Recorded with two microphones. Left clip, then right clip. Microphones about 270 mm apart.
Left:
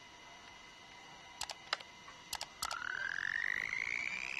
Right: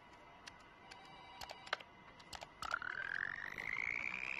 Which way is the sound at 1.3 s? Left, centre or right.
Left.